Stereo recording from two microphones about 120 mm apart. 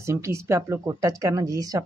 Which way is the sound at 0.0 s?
25° right (ahead or behind).